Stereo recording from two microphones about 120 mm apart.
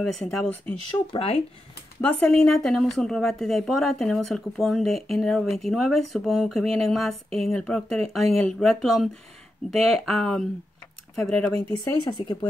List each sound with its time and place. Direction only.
0.0 s speech: centre (ahead or behind)
1.1 s speech: 50° left (ahead or behind)
2.0 s speech: 10° left (ahead or behind)
11.8 s speech: 35° left (ahead or behind)